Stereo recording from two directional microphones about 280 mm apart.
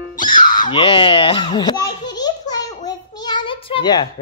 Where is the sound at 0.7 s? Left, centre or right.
Centre.